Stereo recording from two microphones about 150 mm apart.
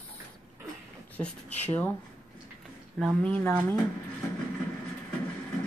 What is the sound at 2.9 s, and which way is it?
Speech, 5° left (ahead or behind).